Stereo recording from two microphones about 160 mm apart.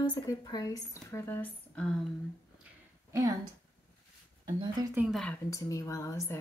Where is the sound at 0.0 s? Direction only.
25° left (ahead or behind).